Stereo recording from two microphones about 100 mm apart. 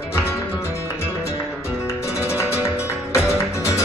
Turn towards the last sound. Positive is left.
turn(degrees=30)  # may be behind; listen again after turning